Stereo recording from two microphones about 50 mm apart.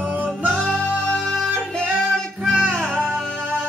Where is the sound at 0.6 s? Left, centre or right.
Centre.